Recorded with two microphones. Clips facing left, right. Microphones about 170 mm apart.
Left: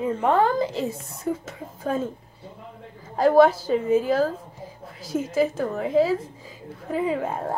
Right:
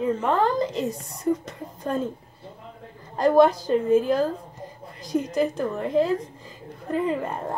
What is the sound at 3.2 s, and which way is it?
A woman's voice, 5° left (ahead or behind).